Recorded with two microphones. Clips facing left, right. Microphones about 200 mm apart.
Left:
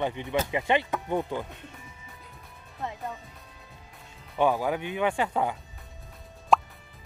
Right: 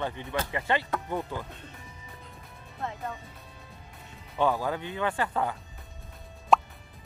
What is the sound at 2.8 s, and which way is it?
Music, 15° left (ahead or behind).